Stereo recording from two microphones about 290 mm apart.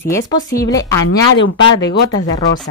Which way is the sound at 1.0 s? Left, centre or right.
Left.